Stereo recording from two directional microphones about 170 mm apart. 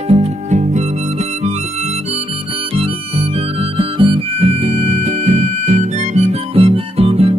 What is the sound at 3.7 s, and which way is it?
Music, 30° right (ahead or behind).